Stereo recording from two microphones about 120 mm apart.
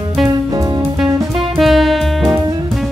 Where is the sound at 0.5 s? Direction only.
30° right (ahead or behind).